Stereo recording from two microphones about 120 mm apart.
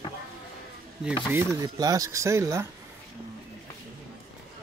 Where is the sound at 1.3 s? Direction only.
25° right (ahead or behind).